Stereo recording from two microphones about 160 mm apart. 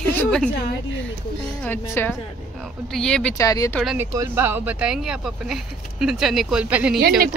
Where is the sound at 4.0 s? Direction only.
15° right (ahead or behind).